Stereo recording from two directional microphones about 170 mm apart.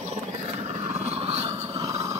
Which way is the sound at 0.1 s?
40° right (ahead or behind).